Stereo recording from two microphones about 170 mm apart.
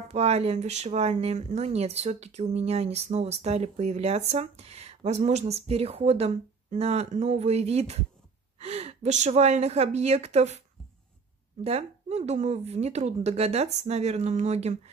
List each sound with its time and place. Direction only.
0.1 s speech: 40° right (ahead or behind)
11.6 s speech: 40° right (ahead or behind)